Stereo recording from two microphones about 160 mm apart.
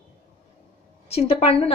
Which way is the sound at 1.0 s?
40° left (ahead or behind).